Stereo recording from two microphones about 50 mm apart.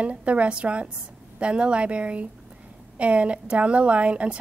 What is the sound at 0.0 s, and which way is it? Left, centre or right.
A woman's voice, right.